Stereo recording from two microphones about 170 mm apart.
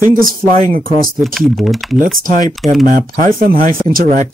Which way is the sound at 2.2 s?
50° right (ahead or behind).